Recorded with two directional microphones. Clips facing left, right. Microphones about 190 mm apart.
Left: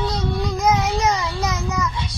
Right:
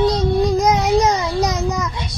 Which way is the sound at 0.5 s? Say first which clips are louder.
Right 5 dB; 35° right (ahead or behind).